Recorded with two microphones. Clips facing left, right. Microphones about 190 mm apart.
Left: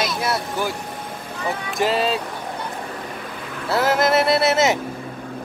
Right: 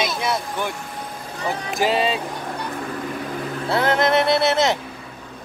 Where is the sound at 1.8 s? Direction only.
Centre (ahead or behind).